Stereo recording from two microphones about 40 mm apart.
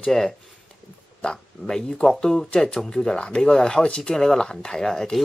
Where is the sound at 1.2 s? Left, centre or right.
Centre.